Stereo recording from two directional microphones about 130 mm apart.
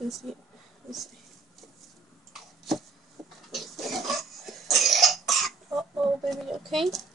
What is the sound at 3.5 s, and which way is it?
Cough, centre (ahead or behind).